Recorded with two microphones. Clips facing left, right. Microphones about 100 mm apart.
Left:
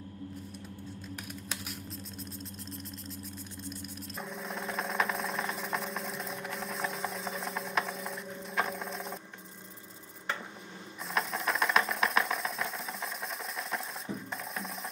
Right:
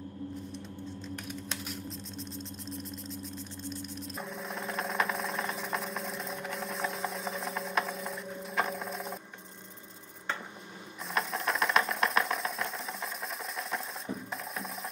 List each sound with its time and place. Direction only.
1.1 s typing: 5° left (ahead or behind)
4.2 s a sound: centre (ahead or behind)
11.1 s engine: centre (ahead or behind)
13.6 s music: centre (ahead or behind)